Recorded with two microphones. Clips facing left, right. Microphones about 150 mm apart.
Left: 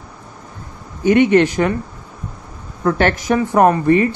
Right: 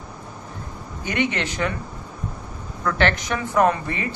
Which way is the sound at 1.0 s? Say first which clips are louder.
Left 13 dB; 45° left (ahead or behind).